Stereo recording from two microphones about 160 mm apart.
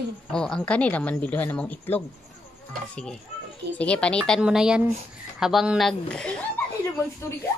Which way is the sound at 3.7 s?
5° left (ahead or behind).